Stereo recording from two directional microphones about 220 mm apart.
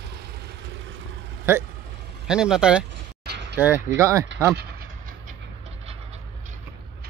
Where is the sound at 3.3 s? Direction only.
50° right (ahead or behind).